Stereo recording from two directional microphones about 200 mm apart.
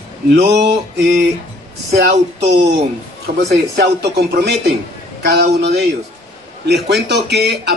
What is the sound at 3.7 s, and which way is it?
Speech, 55° right (ahead or behind).